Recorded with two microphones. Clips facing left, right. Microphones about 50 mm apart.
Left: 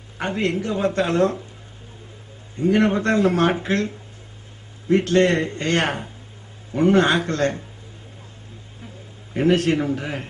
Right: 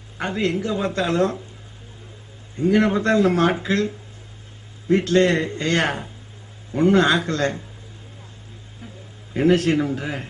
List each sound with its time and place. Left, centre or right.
0.2 s speech: left
2.6 s speech: left
4.9 s speech: left
9.3 s speech: left